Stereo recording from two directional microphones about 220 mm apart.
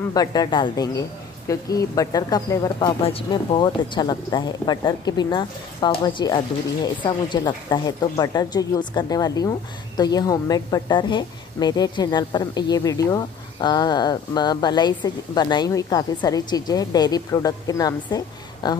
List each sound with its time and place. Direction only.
0.1 s a woman's voice: 15° left (ahead or behind)